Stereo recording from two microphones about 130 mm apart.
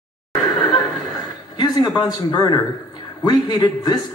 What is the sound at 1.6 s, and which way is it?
A man's voice, 30° left (ahead or behind).